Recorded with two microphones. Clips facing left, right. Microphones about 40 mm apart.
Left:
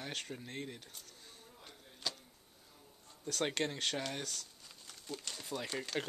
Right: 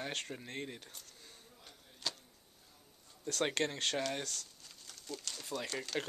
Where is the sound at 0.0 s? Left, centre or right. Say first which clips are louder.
Right 2 dB; centre.